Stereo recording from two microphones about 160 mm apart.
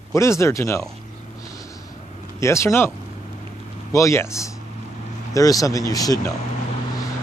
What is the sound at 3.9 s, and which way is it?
Speech, 20° left (ahead or behind).